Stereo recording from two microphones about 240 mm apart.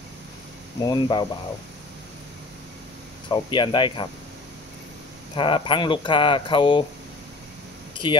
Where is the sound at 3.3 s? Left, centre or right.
Centre.